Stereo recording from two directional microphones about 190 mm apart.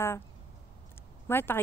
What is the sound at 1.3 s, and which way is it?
Speech, 10° left (ahead or behind).